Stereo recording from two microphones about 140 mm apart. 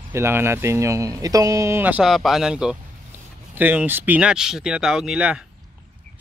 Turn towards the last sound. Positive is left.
turn(degrees=-5)  # may be behind; listen again after turning